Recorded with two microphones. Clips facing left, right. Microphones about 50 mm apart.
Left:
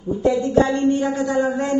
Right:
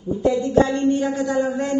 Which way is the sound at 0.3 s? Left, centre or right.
Left.